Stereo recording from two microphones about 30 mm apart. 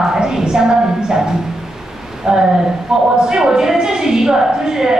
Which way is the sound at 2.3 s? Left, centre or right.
Right.